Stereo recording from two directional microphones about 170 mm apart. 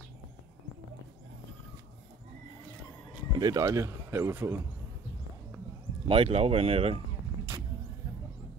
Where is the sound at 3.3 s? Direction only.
20° right (ahead or behind).